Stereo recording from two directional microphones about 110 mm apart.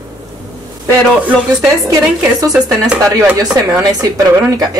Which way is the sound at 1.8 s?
30° right (ahead or behind).